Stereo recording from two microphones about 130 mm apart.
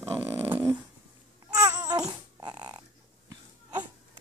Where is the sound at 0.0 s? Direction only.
20° right (ahead or behind).